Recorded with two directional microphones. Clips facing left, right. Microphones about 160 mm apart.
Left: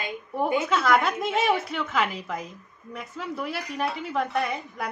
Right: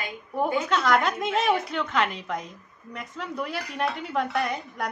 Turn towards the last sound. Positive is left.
turn(degrees=0)  # may be behind; listen again after turning